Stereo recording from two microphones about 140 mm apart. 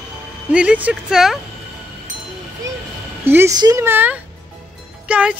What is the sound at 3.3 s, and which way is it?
Speech, 15° right (ahead or behind).